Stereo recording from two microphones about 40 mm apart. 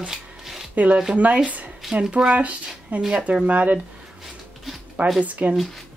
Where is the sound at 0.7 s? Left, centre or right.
Right.